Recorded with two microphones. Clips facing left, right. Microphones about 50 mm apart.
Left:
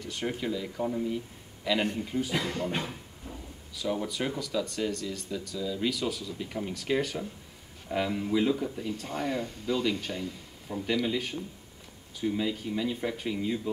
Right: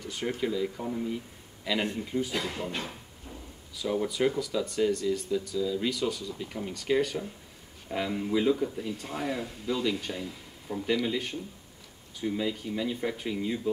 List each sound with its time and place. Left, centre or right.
0.0 s a man's voice: centre
3.7 s speech: centre